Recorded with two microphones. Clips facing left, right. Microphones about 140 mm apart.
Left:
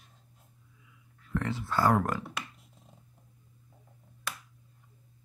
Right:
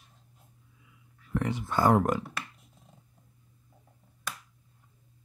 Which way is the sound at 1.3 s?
15° right (ahead or behind).